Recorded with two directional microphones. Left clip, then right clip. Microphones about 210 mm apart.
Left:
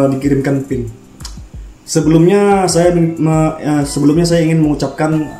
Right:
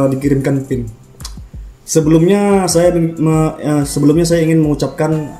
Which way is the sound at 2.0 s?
50° right (ahead or behind).